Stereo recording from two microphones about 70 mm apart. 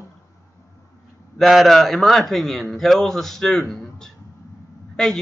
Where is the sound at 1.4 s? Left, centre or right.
Centre.